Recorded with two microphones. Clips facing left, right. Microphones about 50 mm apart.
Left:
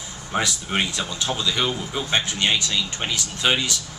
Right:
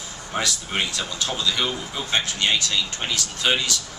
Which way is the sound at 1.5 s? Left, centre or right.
Centre.